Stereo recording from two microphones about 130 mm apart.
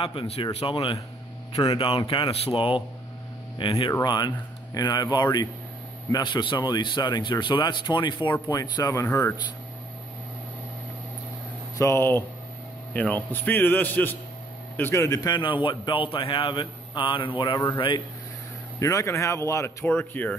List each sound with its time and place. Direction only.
0.0 s speech: 45° left (ahead or behind)
0.7 s speech: 30° left (ahead or behind)
11.8 s a man's voice: 20° left (ahead or behind); by 18.0 s 35° left (ahead or behind)
18.8 s speech: 25° left (ahead or behind)